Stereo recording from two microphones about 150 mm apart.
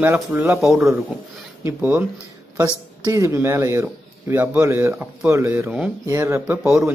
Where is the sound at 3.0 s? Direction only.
20° right (ahead or behind).